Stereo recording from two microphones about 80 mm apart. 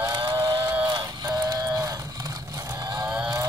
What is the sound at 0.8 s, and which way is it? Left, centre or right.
Livestock, right.